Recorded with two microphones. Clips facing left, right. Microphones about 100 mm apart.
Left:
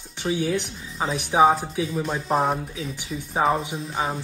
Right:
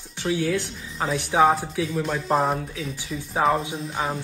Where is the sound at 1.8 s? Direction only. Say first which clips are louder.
Even; centre (ahead or behind).